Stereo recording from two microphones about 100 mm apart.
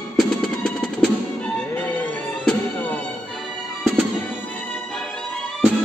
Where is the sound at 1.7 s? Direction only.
15° left (ahead or behind).